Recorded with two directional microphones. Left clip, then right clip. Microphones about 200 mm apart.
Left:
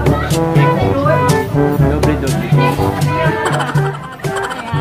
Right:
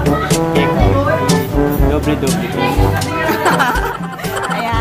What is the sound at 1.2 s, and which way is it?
Music, centre (ahead or behind).